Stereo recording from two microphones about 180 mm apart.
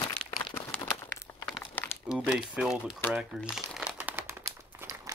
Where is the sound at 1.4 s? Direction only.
5° left (ahead or behind).